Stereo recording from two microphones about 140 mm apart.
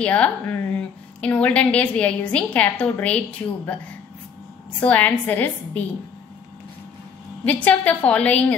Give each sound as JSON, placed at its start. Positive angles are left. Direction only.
{"t": 0.0, "sound": "a woman's voice", "side_deg": 10}
{"t": 7.4, "sound": "a woman's voice", "side_deg": 10}